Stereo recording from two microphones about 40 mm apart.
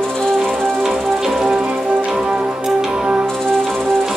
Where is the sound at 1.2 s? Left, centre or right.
Centre.